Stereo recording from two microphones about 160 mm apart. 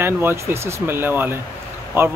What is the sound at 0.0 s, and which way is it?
Speech, 15° right (ahead or behind).